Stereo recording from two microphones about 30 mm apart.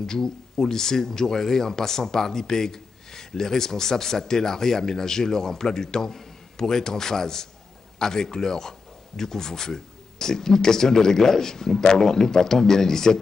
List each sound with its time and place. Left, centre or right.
0.0 s speech: centre